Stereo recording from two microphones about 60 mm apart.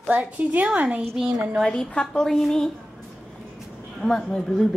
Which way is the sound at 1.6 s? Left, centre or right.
Centre.